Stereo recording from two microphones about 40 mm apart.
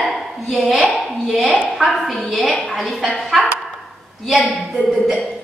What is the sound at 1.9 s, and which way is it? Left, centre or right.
A woman's voice, centre.